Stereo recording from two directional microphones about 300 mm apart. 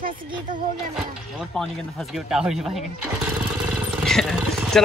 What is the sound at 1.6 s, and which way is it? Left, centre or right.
Speech, centre.